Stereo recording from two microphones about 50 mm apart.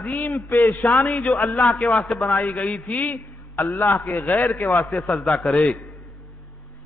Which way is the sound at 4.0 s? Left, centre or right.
Left.